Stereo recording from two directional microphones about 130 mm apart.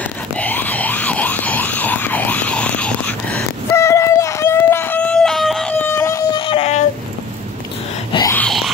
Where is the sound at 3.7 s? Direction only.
20° left (ahead or behind); by 5.6 s centre (ahead or behind).